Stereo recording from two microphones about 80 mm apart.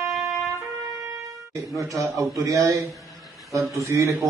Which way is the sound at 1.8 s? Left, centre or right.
Right.